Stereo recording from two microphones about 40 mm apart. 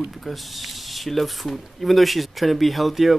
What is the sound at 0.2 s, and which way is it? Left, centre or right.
Speech, centre.